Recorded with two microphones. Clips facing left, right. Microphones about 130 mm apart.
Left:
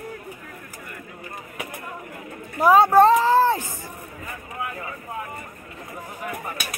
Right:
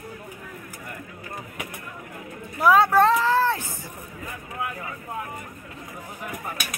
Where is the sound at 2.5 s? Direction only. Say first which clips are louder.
Left 3 dB; 40° left (ahead or behind).